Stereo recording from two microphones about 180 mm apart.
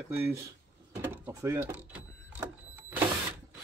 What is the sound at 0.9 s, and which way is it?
Mechanisms, 15° right (ahead or behind).